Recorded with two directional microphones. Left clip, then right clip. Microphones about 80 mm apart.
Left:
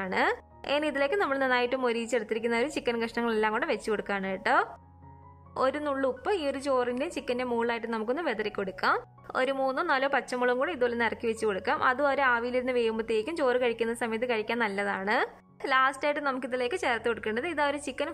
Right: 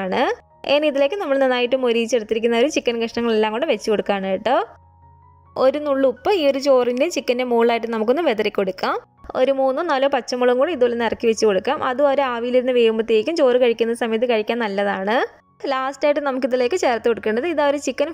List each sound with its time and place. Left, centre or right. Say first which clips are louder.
0.0 s a woman's voice: right 7 dB; right
13.8 s speech: right 10 dB; right
15.7 s a woman's voice: right 6 dB; right